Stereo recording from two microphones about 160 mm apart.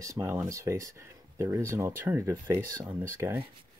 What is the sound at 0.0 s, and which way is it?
Speech, 20° right (ahead or behind).